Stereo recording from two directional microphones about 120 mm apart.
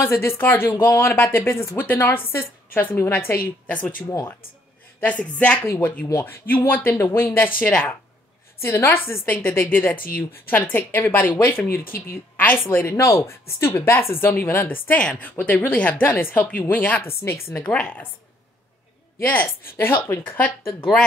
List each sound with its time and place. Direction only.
0.1 s speech: 20° left (ahead or behind)
17.6 s speech: 10° left (ahead or behind)
19.2 s speech: 15° left (ahead or behind)